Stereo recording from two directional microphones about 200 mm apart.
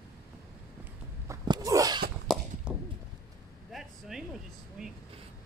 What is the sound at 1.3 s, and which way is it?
Sneeze, 15° right (ahead or behind).